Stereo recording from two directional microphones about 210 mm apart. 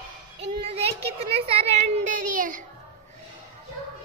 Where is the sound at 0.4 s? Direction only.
30° right (ahead or behind).